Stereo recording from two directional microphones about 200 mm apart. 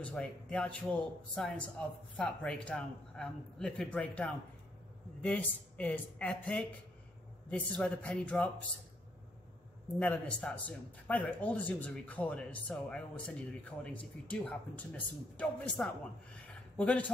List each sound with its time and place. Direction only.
0.0 s a man's voice: 5° left (ahead or behind)
7.7 s a man's voice: 5° left (ahead or behind)
9.9 s a man's voice: 5° left (ahead or behind)